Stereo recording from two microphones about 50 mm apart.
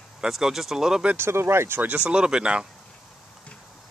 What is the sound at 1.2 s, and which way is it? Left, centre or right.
Speech, right.